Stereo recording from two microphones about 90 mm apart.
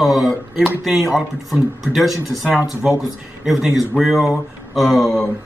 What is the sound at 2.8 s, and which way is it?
Speech, 10° right (ahead or behind).